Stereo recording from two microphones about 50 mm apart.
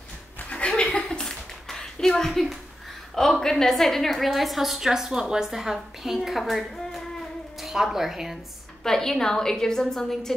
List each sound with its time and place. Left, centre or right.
0.4 s chuckle: left
1.2 s a sound: centre
3.2 s a woman's voice: centre
8.8 s a woman's voice: centre